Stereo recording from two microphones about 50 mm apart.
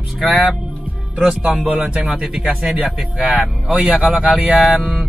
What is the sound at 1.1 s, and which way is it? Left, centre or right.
Speech, centre.